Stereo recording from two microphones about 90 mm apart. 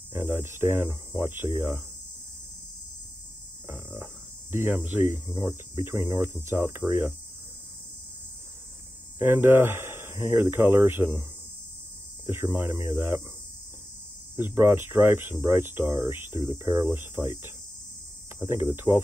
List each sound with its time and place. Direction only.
0.1 s speech: 25° right (ahead or behind)
3.6 s speech: 25° right (ahead or behind)
9.2 s speech: 25° right (ahead or behind)
12.3 s speech: 25° right (ahead or behind)
14.3 s speech: 25° right (ahead or behind)